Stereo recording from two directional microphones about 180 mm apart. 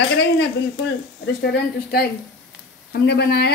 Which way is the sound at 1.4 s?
60° left (ahead or behind).